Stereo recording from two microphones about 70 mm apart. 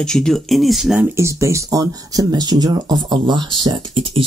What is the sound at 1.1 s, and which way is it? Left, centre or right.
Speech, right.